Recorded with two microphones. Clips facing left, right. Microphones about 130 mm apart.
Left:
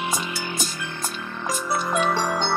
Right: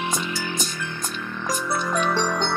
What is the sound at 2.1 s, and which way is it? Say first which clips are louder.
Music: even; 20° left (ahead or behind).